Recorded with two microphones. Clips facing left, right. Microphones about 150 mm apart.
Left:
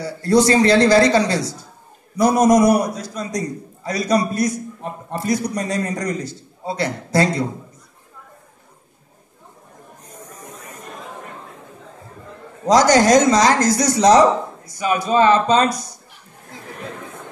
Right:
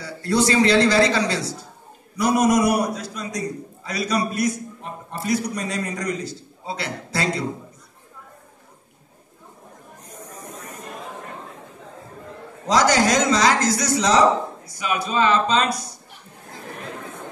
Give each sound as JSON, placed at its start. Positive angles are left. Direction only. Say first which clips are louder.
{"t": 0.0, "sound": "a man's voice", "louder": "left 5 dB", "side_deg": 40}
{"t": 12.6, "sound": "speech", "louder": "left 5 dB", "side_deg": 40}